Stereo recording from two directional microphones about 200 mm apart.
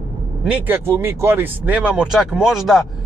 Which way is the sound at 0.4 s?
10° right (ahead or behind).